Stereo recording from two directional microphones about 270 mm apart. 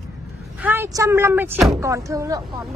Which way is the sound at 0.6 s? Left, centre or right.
Centre.